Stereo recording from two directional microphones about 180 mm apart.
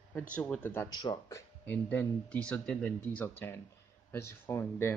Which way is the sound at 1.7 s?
10° left (ahead or behind).